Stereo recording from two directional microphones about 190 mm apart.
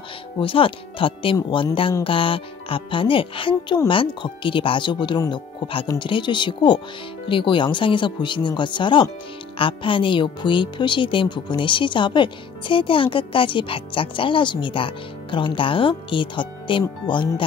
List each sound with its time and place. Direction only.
0.4 s speech: 30° left (ahead or behind)